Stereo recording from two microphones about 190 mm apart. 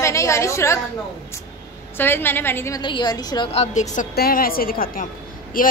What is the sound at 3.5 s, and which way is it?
Speech, 35° left (ahead or behind).